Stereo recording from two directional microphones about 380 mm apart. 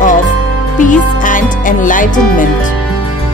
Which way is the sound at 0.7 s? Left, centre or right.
Left.